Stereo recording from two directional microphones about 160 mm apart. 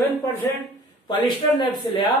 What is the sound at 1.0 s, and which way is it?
Speech, 25° left (ahead or behind).